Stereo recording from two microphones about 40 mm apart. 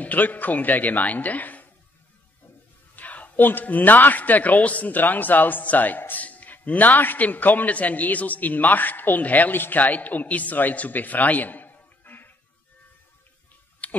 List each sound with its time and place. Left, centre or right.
0.0 s a man's voice: left
3.0 s a sound: left
3.4 s a man's voice: left
6.2 s a man's voice: left
9.2 s a man's voice: left
9.5 s a man's voice: left
9.8 s a man's voice: left
13.8 s a sound: left